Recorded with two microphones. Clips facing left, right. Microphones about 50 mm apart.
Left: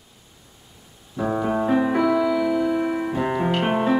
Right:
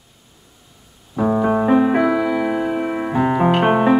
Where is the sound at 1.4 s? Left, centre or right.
Right.